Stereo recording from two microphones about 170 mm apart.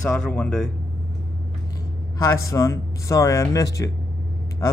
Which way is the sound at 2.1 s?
20° left (ahead or behind).